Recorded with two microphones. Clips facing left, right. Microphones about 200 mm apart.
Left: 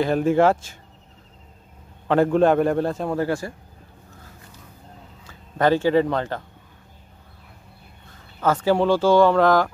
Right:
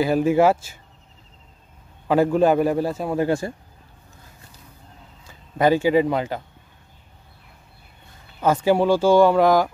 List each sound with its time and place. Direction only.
0.0 s speech: 5° right (ahead or behind)
2.0 s a man's voice: 5° right (ahead or behind)
3.2 s speech: 20° right (ahead or behind)
5.2 s speech: 10° right (ahead or behind)
8.4 s speech: 15° right (ahead or behind)